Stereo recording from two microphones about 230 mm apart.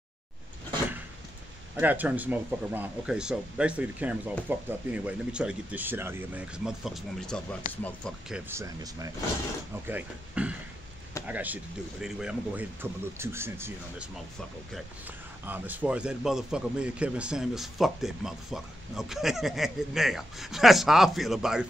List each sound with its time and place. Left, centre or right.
1.8 s speech: centre
15.4 s speech: centre